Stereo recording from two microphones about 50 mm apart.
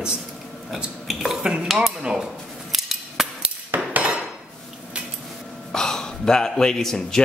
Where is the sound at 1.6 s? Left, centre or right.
Centre.